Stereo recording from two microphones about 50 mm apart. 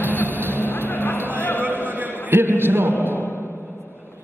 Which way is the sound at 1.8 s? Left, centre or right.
Right.